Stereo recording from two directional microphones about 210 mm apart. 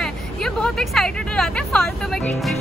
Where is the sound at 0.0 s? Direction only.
Centre (ahead or behind).